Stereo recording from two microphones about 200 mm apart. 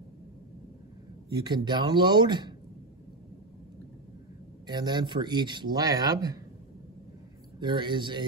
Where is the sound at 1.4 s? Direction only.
20° right (ahead or behind).